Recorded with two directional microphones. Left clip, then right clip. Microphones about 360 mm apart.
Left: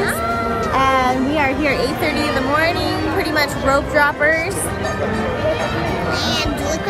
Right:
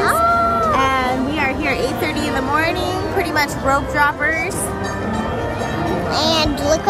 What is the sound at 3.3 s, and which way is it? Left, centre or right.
Speech, centre.